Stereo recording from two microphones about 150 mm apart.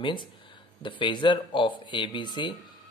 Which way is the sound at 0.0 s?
30° left (ahead or behind).